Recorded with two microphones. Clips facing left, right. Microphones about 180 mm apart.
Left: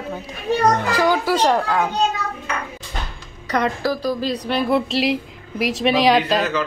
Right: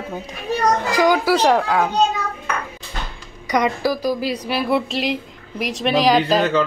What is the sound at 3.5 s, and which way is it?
A woman's voice, 10° right (ahead or behind).